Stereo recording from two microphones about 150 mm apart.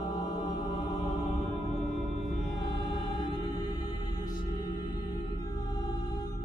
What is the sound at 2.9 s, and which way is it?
Music, 30° left (ahead or behind).